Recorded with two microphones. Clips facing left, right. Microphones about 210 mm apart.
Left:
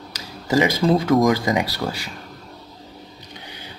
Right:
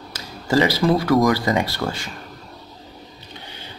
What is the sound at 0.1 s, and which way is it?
Speech, 15° left (ahead or behind).